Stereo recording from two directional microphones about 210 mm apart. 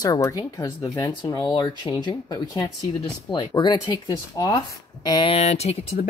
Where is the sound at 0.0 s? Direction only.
15° left (ahead or behind).